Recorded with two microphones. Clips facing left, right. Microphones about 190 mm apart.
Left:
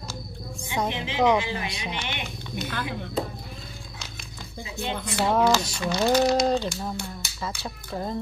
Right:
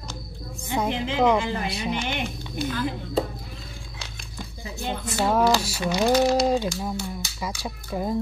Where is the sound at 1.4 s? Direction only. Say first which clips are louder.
Right 3 dB; 45° right (ahead or behind).